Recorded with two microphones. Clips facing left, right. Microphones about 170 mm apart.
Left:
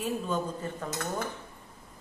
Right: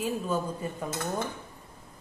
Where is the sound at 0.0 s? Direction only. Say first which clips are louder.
Right 1 dB; 10° right (ahead or behind).